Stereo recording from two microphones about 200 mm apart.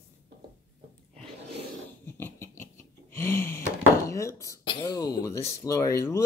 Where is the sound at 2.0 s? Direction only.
10° left (ahead or behind).